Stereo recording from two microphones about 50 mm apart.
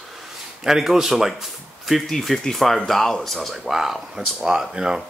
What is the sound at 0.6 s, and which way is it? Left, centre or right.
Speech, centre.